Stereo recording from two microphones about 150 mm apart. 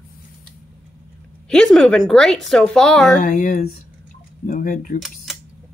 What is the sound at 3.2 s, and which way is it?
Speech, 65° left (ahead or behind).